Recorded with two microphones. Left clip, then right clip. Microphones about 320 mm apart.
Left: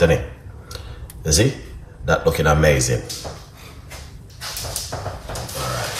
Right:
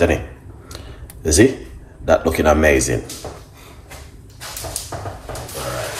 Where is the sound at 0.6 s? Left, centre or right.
Right.